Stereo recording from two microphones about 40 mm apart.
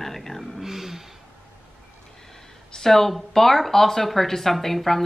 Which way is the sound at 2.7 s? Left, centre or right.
Centre.